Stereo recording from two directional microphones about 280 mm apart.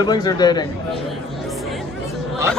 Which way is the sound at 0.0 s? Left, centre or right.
Centre.